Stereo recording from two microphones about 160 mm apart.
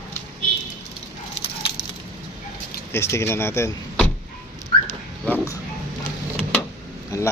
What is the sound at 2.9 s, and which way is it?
Speech, 15° left (ahead or behind).